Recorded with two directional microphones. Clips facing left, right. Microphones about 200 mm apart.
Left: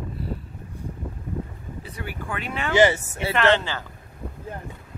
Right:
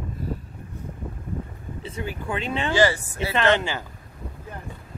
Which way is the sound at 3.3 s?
15° right (ahead or behind).